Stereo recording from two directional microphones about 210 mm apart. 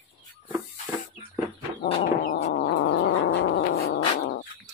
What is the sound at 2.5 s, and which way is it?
Cat, 55° left (ahead or behind).